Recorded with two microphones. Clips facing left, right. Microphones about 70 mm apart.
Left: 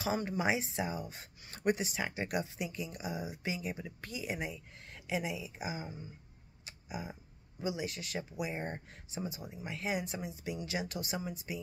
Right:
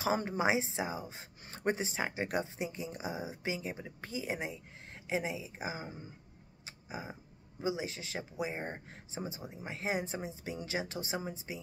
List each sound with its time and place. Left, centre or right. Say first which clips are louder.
0.0 s speech: right 2 dB; right
6.6 s a sound: left 1 dB; right
7.6 s speech: right 1 dB; right